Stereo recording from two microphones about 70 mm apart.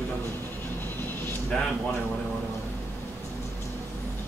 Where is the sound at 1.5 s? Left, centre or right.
Centre.